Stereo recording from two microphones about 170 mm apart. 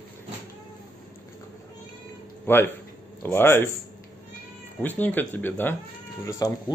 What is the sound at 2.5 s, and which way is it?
Speech, 10° left (ahead or behind).